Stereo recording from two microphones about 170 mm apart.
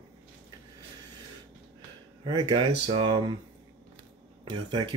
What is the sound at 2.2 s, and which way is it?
Speech, 30° right (ahead or behind).